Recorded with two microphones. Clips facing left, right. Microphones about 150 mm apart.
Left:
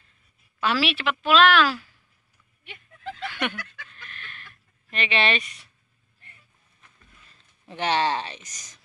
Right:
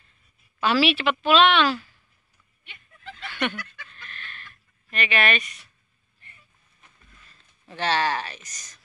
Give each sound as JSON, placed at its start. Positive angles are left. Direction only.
{"t": 0.6, "sound": "a woman's voice", "side_deg": 0}
{"t": 3.3, "sound": "a sound", "side_deg": 10}
{"t": 4.9, "sound": "speech", "side_deg": 25}
{"t": 7.2, "sound": "speech", "side_deg": 20}